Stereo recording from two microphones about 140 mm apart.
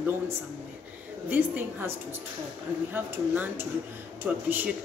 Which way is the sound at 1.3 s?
15° right (ahead or behind).